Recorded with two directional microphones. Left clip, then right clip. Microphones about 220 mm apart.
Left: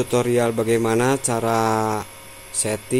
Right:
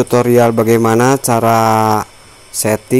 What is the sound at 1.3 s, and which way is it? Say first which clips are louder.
Mantra: right 9 dB; 30° right (ahead or behind).